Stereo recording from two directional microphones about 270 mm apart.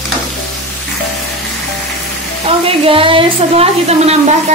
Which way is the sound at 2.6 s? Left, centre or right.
Centre.